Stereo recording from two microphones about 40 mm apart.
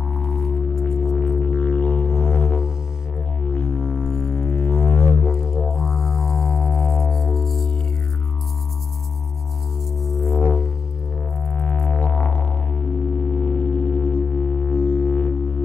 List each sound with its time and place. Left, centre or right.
0.1 s music: left
1.1 s music: left
5.8 s music: centre
9.9 s music: centre
10.3 s music: left